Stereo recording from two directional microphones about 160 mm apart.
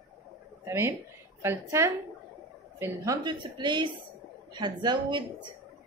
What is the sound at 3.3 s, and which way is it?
Speech, 30° right (ahead or behind).